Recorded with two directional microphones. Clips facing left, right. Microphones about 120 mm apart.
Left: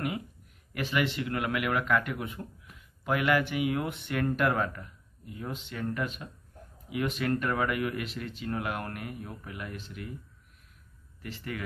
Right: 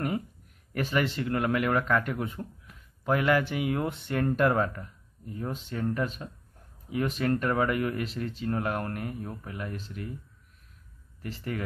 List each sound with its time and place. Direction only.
0.7 s speech: 40° right (ahead or behind)
11.2 s speech: 35° right (ahead or behind)